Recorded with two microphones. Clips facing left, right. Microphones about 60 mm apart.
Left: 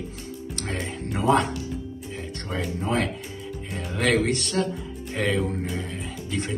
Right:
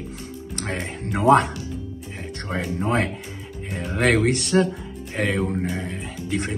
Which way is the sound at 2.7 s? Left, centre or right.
Right.